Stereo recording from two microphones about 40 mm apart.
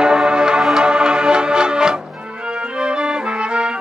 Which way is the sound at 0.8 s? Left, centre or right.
Centre.